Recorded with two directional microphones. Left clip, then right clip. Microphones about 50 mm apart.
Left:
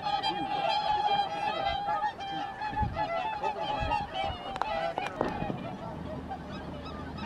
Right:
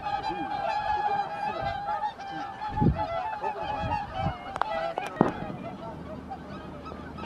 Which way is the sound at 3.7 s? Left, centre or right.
Centre.